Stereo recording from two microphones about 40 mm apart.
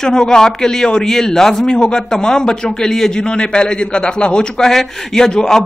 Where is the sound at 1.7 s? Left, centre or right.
Left.